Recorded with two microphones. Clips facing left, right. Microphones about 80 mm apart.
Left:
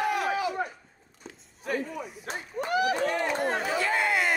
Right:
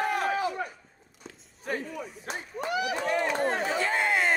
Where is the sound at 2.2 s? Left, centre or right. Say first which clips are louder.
Left 1 dB; left.